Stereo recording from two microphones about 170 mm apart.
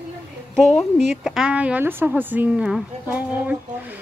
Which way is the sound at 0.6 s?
Centre (ahead or behind).